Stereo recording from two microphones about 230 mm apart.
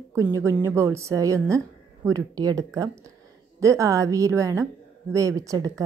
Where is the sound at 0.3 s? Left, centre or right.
Centre.